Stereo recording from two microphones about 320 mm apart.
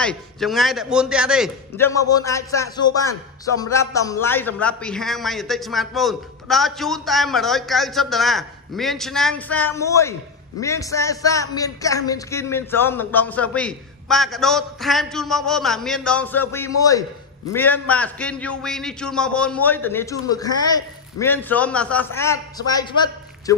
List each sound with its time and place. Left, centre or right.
0.0 s a man's voice: centre
2.0 s a man's voice: centre